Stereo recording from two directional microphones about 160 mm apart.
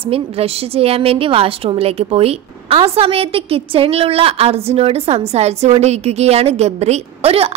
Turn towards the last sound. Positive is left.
turn(degrees=-40)  # may be behind; listen again after turning